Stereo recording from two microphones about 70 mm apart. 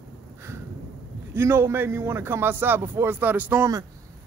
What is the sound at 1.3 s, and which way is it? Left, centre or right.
A man's voice, right.